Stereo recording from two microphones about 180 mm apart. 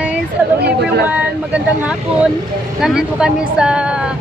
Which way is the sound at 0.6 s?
65° right (ahead or behind).